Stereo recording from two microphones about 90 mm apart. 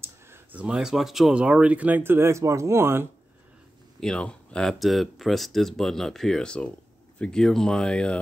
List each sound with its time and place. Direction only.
0.0 s a sound: 25° right (ahead or behind)
0.6 s speech: 10° right (ahead or behind); by 3.1 s 30° right (ahead or behind)
4.0 s speech: 10° left (ahead or behind)